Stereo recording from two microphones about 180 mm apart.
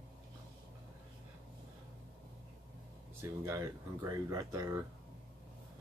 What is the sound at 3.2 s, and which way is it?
Speech, 15° right (ahead or behind).